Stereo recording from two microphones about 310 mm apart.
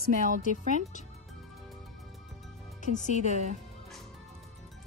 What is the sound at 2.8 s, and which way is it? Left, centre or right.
Speech, left.